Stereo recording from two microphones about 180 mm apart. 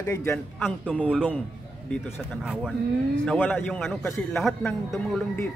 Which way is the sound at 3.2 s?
5° left (ahead or behind).